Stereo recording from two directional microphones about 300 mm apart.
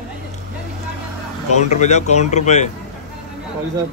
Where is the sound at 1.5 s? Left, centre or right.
Left.